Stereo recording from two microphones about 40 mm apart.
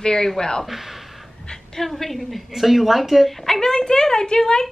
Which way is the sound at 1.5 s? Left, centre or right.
Centre.